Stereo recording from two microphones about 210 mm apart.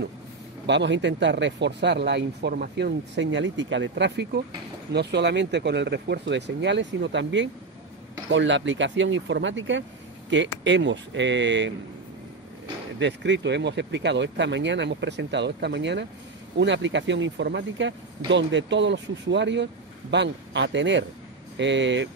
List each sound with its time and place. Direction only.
0.7 s speech: 55° right (ahead or behind)
13.0 s speech: 55° right (ahead or behind)